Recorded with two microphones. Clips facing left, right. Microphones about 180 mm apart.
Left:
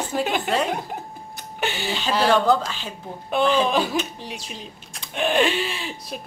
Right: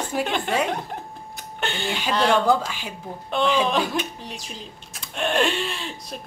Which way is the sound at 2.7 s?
10° right (ahead or behind).